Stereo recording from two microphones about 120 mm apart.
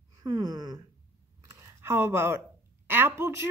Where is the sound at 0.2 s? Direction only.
35° right (ahead or behind).